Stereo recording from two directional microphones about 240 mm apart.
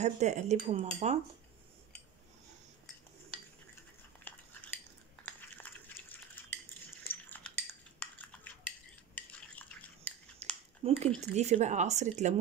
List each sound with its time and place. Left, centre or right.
0.0 s cutlery: right
4.3 s a sound: centre
5.2 s cutlery: centre
8.6 s cutlery: centre
10.8 s speech: right
11.3 s cutlery: right